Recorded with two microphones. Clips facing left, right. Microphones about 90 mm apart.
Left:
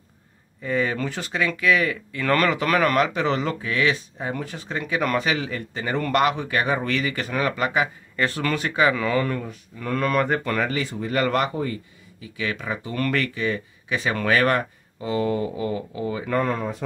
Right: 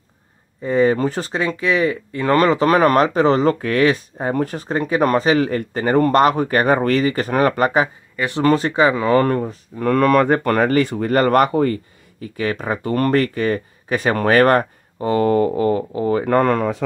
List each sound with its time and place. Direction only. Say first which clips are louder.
0.6 s speech: right 8 dB; 30° right (ahead or behind); by 7.0 s 50° right (ahead or behind)
7.0 s speech: right 8 dB; 40° right (ahead or behind)
9.1 s speech: right 8 dB; 45° right (ahead or behind)
9.8 s speech: right 8 dB; 60° right (ahead or behind)
10.4 s speech: right 9 dB; 50° right (ahead or behind); by 16.7 s 70° right (ahead or behind)